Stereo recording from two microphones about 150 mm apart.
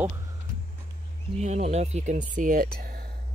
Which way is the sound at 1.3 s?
50° right (ahead or behind).